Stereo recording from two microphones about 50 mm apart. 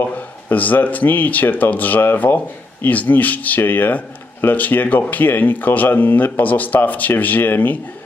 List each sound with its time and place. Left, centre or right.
0.1 s speech: left